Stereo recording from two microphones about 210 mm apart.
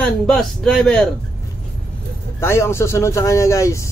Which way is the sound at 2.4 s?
10° left (ahead or behind).